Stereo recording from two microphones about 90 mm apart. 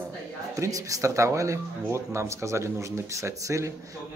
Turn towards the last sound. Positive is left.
turn(degrees=-35)  # may be behind; listen again after turning